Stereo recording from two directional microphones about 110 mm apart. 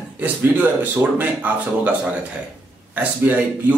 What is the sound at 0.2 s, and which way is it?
Speech, 15° right (ahead or behind).